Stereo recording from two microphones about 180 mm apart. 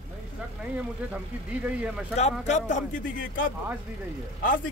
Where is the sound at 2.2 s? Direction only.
40° left (ahead or behind).